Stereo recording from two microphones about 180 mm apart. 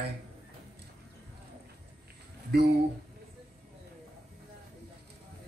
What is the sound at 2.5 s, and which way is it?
Speech, 65° right (ahead or behind).